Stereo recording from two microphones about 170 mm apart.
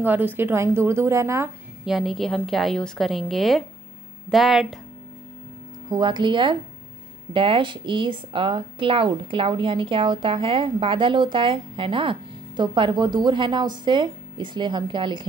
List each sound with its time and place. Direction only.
0.0 s a woman's voice: 10° right (ahead or behind)
1.9 s a woman's voice: centre (ahead or behind)
5.9 s a woman's voice: 30° right (ahead or behind)